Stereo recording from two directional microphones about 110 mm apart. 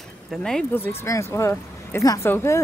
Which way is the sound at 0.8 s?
25° left (ahead or behind).